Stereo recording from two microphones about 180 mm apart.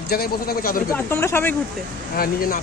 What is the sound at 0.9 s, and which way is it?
Speech, 15° left (ahead or behind).